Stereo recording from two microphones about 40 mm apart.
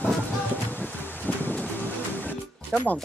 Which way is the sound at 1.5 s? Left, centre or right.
Left.